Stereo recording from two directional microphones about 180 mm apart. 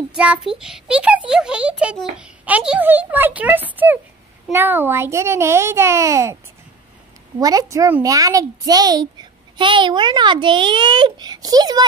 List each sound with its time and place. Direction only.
0.1 s a child's voice: 5° right (ahead or behind)
7.3 s speech: 20° right (ahead or behind)